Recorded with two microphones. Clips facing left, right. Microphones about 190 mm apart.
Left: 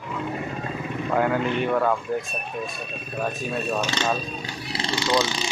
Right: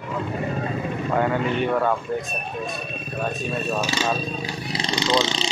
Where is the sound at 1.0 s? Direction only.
Centre (ahead or behind).